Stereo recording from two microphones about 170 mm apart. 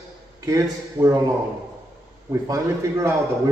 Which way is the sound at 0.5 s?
20° right (ahead or behind).